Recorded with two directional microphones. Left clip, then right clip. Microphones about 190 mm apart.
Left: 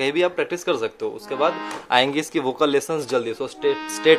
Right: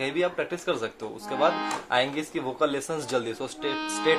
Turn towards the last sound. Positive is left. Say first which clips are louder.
# left 8 dB
turn(degrees=45)  # may be behind; listen again after turning